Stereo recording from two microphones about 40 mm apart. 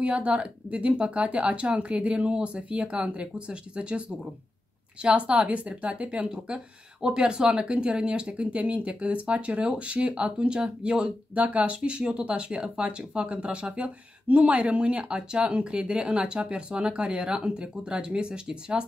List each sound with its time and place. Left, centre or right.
0.0 s a woman's voice: right
5.2 s a woman's voice: right